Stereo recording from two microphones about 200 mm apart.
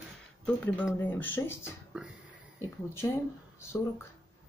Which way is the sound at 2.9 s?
15° left (ahead or behind).